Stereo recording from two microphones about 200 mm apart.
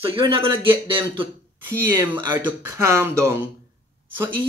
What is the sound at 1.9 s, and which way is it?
Speech, 15° right (ahead or behind).